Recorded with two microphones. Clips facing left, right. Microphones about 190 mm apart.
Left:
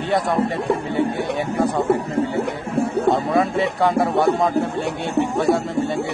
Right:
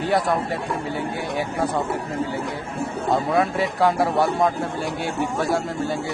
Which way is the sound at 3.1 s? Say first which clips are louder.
Right 1 dB; centre (ahead or behind).